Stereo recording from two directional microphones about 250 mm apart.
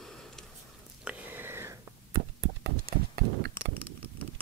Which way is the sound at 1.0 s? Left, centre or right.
Centre.